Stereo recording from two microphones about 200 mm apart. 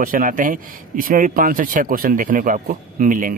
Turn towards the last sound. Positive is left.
turn(degrees=-40)  # may be behind; listen again after turning